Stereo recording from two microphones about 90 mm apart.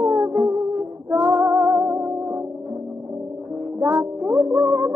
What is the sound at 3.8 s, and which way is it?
Music, 25° right (ahead or behind).